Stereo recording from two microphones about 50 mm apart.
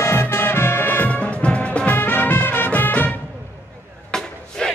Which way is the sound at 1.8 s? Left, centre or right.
Left.